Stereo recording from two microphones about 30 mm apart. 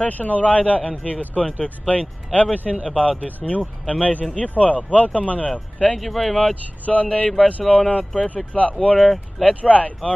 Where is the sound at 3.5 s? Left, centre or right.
Left.